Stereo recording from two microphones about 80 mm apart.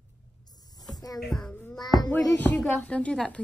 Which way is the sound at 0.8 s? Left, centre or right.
Left.